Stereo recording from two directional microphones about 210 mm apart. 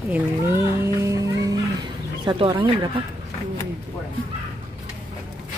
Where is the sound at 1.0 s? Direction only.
15° right (ahead or behind).